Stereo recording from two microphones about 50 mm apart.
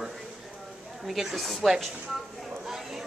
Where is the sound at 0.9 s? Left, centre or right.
Centre.